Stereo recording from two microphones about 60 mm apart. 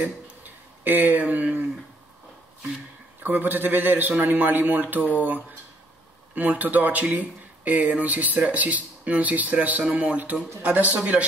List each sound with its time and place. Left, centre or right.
0.0 s speech: right
3.2 s a man's voice: right
6.3 s speech: right